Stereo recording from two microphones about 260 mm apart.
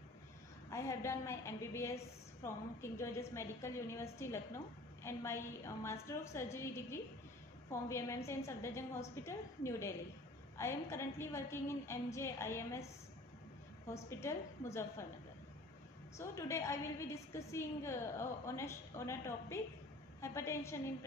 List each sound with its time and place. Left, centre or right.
0.7 s a woman's voice: centre
13.8 s a woman's voice: centre
16.2 s a woman's voice: centre